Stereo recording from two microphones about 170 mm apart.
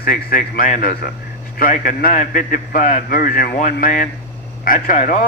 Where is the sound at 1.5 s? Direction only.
55° left (ahead or behind).